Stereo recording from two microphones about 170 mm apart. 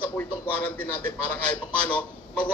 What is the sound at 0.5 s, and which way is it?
A man's voice, 10° left (ahead or behind).